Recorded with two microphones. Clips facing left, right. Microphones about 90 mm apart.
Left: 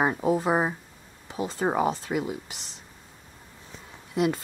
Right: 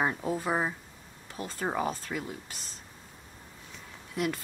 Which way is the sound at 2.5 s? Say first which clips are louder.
Left 1 dB; 80° left.